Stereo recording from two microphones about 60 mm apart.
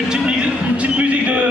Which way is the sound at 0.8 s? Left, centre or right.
Right.